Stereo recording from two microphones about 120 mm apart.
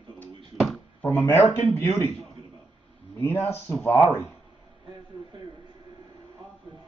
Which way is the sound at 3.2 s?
20° left (ahead or behind).